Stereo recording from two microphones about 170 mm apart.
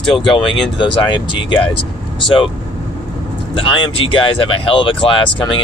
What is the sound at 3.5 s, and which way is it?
Speech, 30° left (ahead or behind).